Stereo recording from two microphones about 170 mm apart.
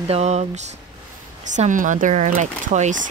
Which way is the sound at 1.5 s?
50° right (ahead or behind).